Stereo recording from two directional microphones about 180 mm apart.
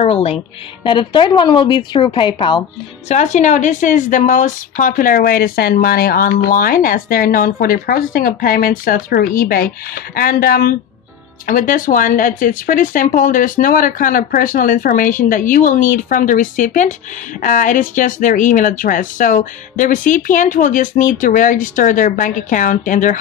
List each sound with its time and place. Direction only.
0.0 s a woman's voice: 35° left (ahead or behind)
3.1 s a woman's voice: 40° left (ahead or behind)